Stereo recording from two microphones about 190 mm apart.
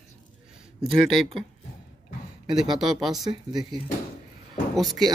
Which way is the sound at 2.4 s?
25° right (ahead or behind).